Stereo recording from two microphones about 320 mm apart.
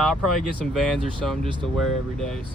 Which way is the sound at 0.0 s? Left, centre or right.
Centre.